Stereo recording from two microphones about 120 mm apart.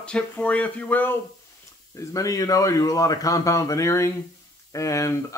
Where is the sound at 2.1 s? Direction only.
30° left (ahead or behind).